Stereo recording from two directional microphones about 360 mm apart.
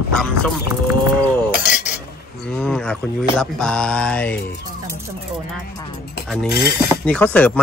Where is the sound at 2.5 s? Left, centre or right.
Centre.